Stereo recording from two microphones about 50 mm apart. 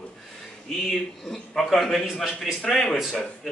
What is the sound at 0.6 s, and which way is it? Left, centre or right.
A man's voice, centre.